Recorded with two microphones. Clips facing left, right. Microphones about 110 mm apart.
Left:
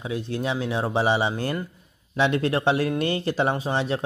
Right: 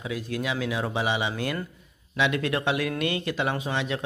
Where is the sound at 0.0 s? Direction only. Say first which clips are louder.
Left 3 dB; 30° left (ahead or behind).